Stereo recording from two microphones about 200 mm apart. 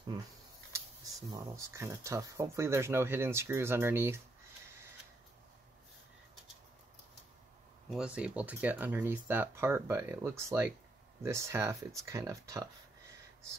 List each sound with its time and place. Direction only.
0.7 s speech: 15° right (ahead or behind)
7.9 s speech: 5° right (ahead or behind)